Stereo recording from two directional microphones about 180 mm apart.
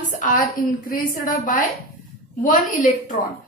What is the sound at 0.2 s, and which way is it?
A woman's voice, 50° left (ahead or behind).